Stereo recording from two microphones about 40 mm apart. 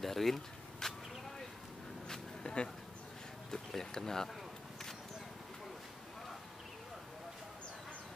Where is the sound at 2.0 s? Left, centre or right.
Centre.